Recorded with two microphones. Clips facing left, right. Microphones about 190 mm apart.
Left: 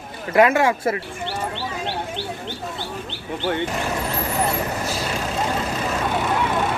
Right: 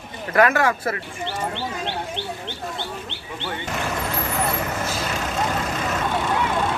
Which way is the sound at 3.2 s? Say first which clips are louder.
Left 9 dB; 50° left (ahead or behind).